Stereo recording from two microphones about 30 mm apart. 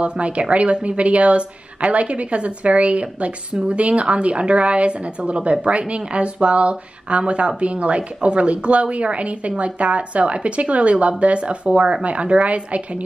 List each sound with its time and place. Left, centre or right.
0.0 s a woman's voice: right